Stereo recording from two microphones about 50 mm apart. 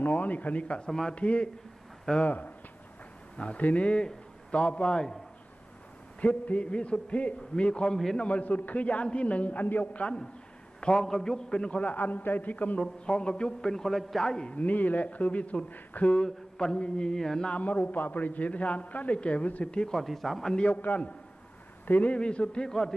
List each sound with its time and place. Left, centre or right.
0.0 s a man's voice: left; by 5.2 s centre
6.2 s a man's voice: left
10.8 s a man's voice: centre
11.8 s speech: left
12.8 s a man's voice: centre
14.5 s speech: left
16.1 s a man's voice: centre
17.5 s a man's voice: left
20.0 s speech: centre
20.5 s a man's voice: left
22.1 s a man's voice: left
22.7 s a man's voice: centre